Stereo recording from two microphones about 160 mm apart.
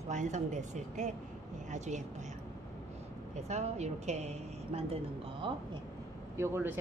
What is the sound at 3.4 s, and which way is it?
Speech, 45° right (ahead or behind).